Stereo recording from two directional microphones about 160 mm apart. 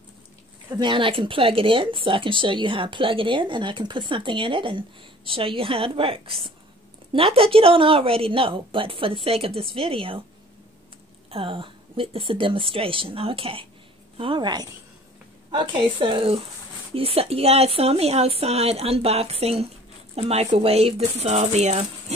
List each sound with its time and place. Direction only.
0.7 s speech: 30° right (ahead or behind)
11.2 s a woman's voice: 35° right (ahead or behind)